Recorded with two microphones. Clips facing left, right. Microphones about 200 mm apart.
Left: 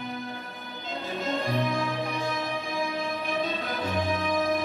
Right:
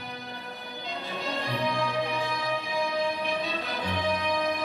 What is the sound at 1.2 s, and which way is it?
Music, 50° left (ahead or behind).